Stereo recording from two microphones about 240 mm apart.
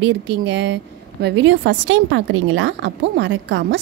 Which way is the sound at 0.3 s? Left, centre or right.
Right.